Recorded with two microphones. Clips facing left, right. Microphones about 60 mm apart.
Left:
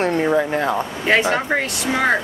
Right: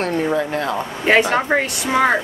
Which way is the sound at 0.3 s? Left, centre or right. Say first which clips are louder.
Left 2 dB; left.